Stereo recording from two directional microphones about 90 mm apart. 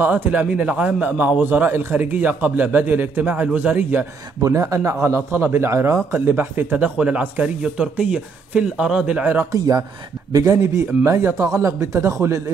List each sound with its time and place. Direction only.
0.0 s a man's voice: 15° right (ahead or behind)
4.4 s a man's voice: 35° right (ahead or behind); by 9.5 s 15° right (ahead or behind)
9.5 s speech: 40° right (ahead or behind)